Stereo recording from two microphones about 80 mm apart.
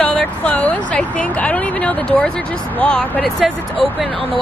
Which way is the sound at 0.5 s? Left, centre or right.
Centre.